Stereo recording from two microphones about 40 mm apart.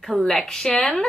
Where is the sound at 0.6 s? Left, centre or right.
Centre.